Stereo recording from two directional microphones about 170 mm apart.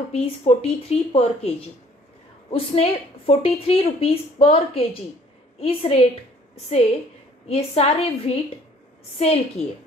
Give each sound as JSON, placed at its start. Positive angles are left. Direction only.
{"t": 0.1, "sound": "a woman's voice", "side_deg": 35}
{"t": 2.5, "sound": "a woman's voice", "side_deg": 35}